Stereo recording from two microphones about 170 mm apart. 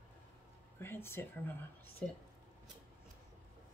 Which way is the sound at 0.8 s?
15° left (ahead or behind).